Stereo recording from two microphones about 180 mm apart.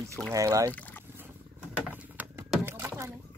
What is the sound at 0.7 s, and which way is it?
Boat, 10° left (ahead or behind).